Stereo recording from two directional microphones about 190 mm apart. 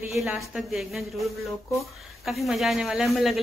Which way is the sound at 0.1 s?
Centre (ahead or behind).